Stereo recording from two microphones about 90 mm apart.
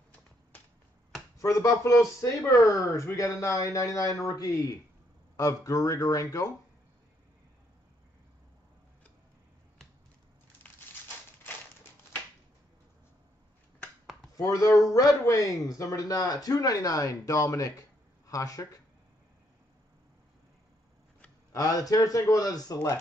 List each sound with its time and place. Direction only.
1.4 s speech: 40° left (ahead or behind)
14.3 s speech: 40° left (ahead or behind)
21.5 s speech: 40° left (ahead or behind)